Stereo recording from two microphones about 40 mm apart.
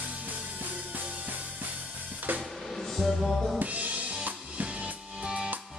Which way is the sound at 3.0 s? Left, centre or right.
Centre.